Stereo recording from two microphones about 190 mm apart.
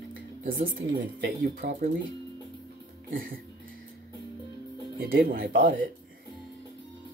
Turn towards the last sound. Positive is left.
turn(degrees=-50)  # may be behind; listen again after turning